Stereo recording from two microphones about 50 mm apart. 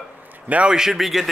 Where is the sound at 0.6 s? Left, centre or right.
Centre.